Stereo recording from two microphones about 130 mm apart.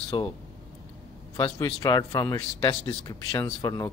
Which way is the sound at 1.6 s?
30° left (ahead or behind).